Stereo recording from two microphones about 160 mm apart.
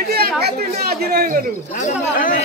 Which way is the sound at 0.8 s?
70° right (ahead or behind).